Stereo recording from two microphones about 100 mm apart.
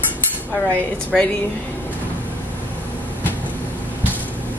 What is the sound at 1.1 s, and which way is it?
Speech, 5° left (ahead or behind).